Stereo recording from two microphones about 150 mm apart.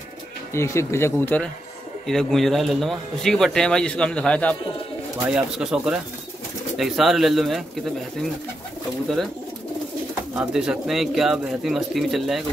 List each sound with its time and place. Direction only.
0.5 s speech: 20° left (ahead or behind)
5.2 s speech: 5° right (ahead or behind)
10.3 s speech: 5° right (ahead or behind)